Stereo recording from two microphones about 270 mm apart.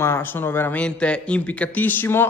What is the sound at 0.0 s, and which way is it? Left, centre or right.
A man's voice, centre.